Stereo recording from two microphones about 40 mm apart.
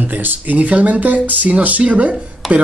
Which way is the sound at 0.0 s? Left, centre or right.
Right.